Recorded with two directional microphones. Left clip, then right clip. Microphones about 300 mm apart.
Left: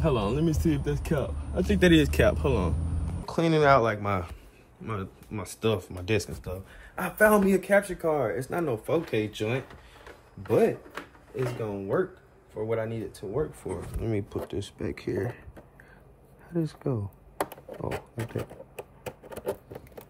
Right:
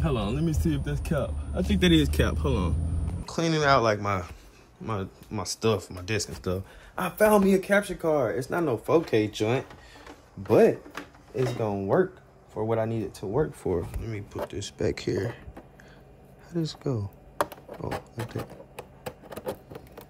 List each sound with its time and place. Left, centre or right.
0.0 s a man's voice: centre
7.0 s speech: centre
8.5 s speech: centre
10.5 s speech: centre
14.0 s a man's voice: centre
14.8 s speech: centre
16.5 s a man's voice: centre
17.5 s a sound: centre